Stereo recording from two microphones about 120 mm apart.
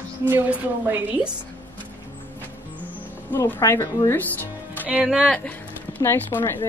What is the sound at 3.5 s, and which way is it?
Speech, 25° left (ahead or behind).